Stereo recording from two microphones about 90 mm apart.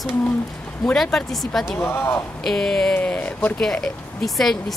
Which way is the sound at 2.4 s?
5° left (ahead or behind).